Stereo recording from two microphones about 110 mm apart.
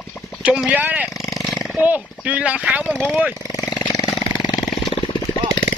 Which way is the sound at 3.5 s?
30° left (ahead or behind).